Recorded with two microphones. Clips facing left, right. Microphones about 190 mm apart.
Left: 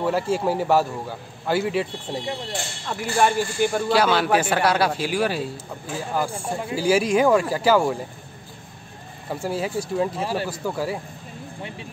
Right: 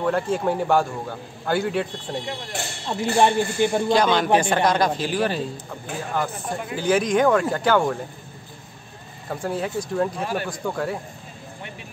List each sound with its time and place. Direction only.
0.0 s a man's voice: 5° left (ahead or behind)
2.9 s a man's voice: 25° right (ahead or behind)
3.9 s a man's voice: 5° left (ahead or behind)
9.3 s a man's voice: 5° left (ahead or behind)
10.2 s a man's voice: 30° left (ahead or behind)
10.5 s a man's voice: 5° left (ahead or behind)